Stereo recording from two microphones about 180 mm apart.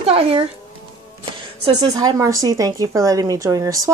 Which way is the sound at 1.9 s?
20° right (ahead or behind).